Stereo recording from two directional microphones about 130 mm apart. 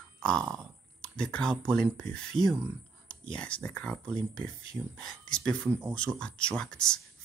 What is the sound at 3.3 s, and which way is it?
Speech, 10° left (ahead or behind).